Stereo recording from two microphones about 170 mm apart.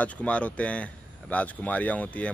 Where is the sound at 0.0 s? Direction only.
5° left (ahead or behind).